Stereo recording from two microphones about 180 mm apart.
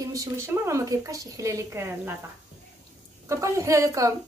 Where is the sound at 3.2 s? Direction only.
15° right (ahead or behind).